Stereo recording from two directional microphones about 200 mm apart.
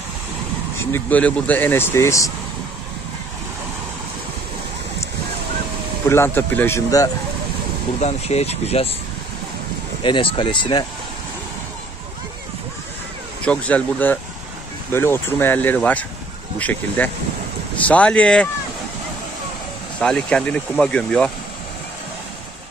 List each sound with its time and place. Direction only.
0.9 s speech: 5° left (ahead or behind)
6.0 s speech: 10° left (ahead or behind)
8.0 s speech: 30° left (ahead or behind)
10.0 s speech: 25° left (ahead or behind)
13.4 s speech: 5° left (ahead or behind)
20.0 s speech: 5° left (ahead or behind)